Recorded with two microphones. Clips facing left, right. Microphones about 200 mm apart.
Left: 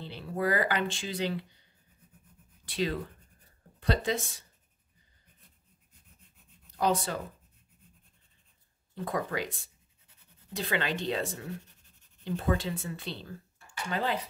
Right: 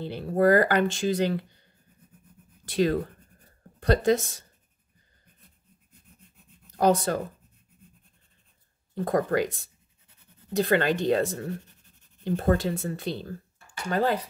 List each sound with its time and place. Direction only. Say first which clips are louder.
0.0 s speech: right 9 dB; 45° right (ahead or behind)
6.8 s speech: right 6 dB; 45° right (ahead or behind)
8.9 s speech: right 8 dB; 45° right (ahead or behind)